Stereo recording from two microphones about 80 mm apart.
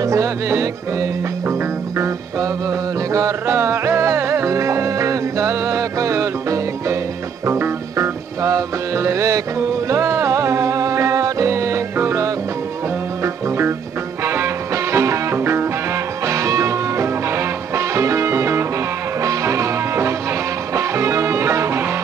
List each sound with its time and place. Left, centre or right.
0.0 s music: right
8.4 s music: right